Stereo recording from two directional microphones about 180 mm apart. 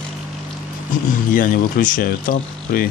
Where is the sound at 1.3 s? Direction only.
50° left (ahead or behind).